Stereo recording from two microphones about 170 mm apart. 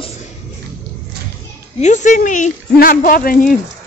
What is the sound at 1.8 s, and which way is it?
Speech, 45° left (ahead or behind).